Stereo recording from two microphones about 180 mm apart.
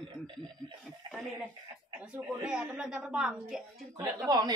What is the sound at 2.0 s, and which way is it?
A woman's voice, 5° right (ahead or behind).